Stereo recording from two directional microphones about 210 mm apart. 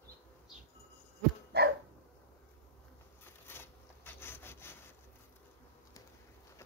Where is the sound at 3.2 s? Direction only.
10° left (ahead or behind).